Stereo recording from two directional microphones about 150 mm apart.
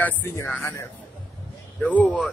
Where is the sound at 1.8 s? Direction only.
10° left (ahead or behind).